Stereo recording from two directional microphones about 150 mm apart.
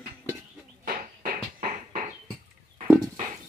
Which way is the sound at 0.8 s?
80° right.